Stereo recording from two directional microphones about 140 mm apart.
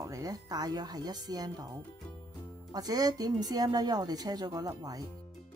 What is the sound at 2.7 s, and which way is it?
Speech, 30° right (ahead or behind).